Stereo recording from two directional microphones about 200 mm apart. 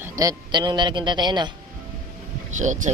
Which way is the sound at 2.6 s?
40° right (ahead or behind).